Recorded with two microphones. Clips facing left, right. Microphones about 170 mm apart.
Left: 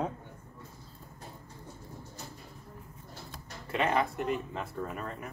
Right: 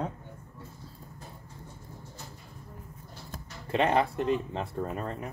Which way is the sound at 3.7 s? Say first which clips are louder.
Right 4 dB; 30° right (ahead or behind).